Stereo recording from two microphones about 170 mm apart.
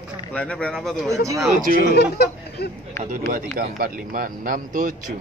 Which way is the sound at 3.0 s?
50° right (ahead or behind).